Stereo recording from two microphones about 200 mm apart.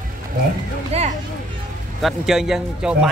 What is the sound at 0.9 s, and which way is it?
Speech, 30° right (ahead or behind).